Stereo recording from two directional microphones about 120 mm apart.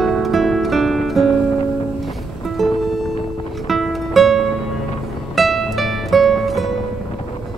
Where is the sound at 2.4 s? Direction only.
Centre (ahead or behind).